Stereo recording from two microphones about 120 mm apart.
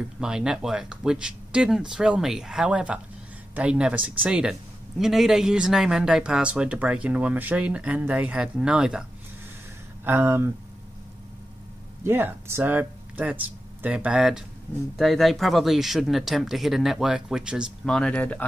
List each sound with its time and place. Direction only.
0.2 s speech: 5° right (ahead or behind)
10.0 s speech: 20° right (ahead or behind)
12.0 s speech: 20° right (ahead or behind)
17.8 s speech: 5° left (ahead or behind)